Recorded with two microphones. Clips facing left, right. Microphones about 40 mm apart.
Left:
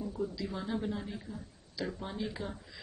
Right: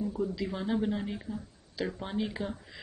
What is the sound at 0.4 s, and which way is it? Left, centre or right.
Speech, right.